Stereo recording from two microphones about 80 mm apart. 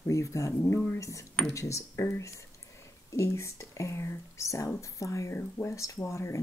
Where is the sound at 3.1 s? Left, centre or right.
Left.